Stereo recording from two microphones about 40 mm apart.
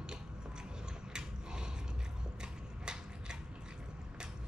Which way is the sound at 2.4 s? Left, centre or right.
Centre.